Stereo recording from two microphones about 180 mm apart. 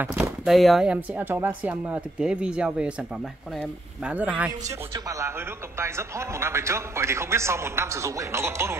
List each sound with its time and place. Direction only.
0.0 s a man's voice: 10° right (ahead or behind)
0.5 s speech: centre (ahead or behind)
4.0 s a man's voice: 10° right (ahead or behind)
4.6 s a man's voice: 20° right (ahead or behind)